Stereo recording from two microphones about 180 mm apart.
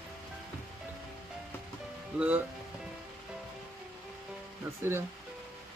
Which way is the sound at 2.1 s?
10° right (ahead or behind).